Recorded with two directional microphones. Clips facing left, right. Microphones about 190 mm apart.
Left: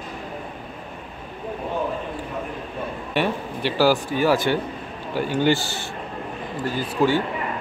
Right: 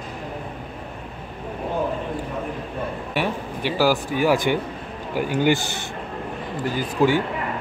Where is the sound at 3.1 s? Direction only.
10° right (ahead or behind).